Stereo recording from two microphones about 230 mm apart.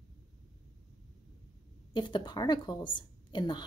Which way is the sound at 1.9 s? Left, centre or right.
Centre.